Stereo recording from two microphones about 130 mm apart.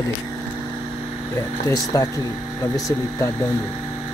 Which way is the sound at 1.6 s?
25° left (ahead or behind).